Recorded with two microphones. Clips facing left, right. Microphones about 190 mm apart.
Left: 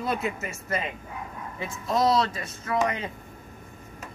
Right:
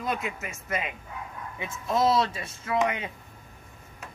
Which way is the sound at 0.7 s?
10° right (ahead or behind).